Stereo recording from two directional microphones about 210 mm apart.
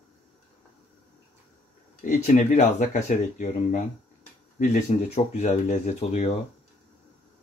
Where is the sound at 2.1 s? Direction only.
35° left (ahead or behind).